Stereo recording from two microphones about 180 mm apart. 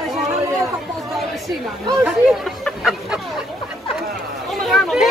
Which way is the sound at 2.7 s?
Centre (ahead or behind).